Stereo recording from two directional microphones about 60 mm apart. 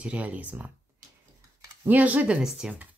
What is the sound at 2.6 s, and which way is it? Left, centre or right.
Speech, centre.